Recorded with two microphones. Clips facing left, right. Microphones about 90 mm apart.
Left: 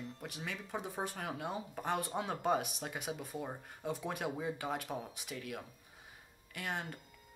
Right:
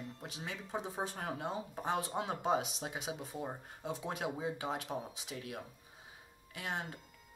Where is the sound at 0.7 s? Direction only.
25° right (ahead or behind).